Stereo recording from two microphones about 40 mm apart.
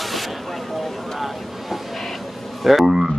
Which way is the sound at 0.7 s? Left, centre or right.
Centre.